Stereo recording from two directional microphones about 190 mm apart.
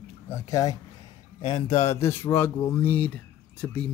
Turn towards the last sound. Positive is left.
turn(degrees=5)  # may be behind; listen again after turning